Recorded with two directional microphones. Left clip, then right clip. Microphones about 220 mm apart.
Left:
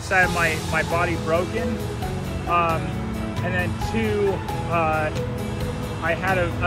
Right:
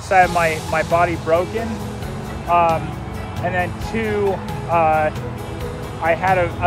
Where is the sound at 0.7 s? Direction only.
30° right (ahead or behind).